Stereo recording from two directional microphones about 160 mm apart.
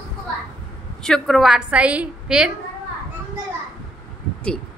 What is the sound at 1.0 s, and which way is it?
A woman's voice, centre (ahead or behind).